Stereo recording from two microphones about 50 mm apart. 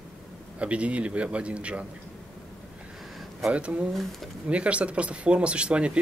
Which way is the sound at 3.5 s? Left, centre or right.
Right.